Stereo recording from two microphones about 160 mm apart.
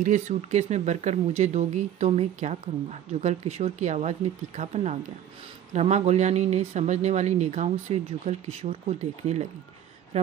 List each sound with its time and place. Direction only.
0.0 s a man's voice: 50° right (ahead or behind)